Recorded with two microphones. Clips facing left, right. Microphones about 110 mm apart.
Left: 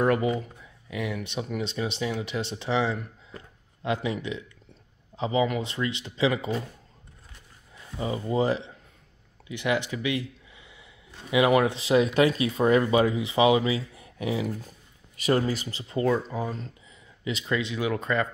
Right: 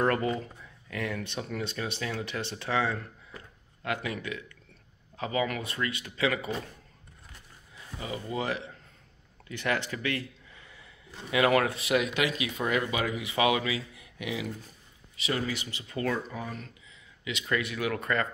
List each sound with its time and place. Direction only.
0.0 s speech: 10° left (ahead or behind)
8.0 s speech: 30° left (ahead or behind)
9.5 s speech: 15° left (ahead or behind); by 14.5 s 35° left (ahead or behind)
15.1 s speech: 45° left (ahead or behind)
17.5 s speech: 20° left (ahead or behind)